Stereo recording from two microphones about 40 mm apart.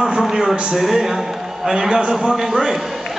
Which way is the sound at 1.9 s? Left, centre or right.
Right.